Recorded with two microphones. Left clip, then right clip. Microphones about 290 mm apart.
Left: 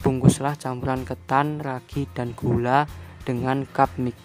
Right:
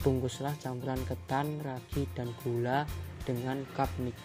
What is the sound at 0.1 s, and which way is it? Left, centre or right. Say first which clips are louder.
Speech: left 11 dB; left.